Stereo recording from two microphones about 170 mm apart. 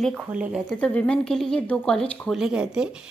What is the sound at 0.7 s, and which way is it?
A woman's voice, 5° left (ahead or behind).